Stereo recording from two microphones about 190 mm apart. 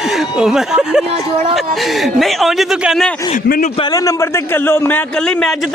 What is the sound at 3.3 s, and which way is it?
Speech, 40° left (ahead or behind).